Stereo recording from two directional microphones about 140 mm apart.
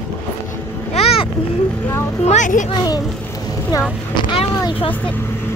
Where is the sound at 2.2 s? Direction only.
60° left (ahead or behind).